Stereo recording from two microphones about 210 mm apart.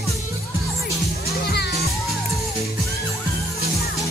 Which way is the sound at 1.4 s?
50° left (ahead or behind).